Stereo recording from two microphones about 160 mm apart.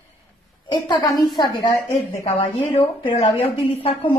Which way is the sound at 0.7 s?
25° left (ahead or behind).